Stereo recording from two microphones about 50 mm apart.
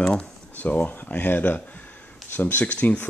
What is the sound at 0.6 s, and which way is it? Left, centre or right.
Speech, left.